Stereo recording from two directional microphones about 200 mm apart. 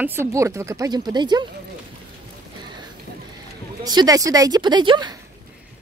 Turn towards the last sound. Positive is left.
turn(degrees=-20)  # may be behind; listen again after turning